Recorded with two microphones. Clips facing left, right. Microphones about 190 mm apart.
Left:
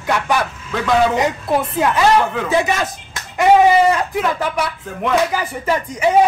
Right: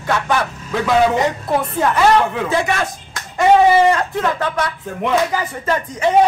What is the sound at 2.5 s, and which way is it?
A man's voice, 20° left (ahead or behind).